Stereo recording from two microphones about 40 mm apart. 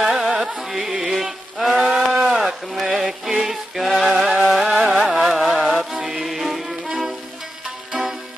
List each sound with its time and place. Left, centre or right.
0.0 s music: centre
1.1 s a sound: centre
3.3 s music: centre
5.0 s carnatic music: centre
5.7 s music: right
6.2 s music: centre